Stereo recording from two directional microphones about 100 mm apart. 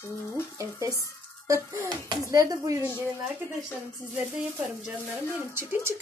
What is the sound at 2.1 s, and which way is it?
Frying, 35° right (ahead or behind).